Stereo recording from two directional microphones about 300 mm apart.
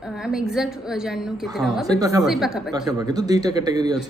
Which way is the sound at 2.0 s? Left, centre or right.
Centre.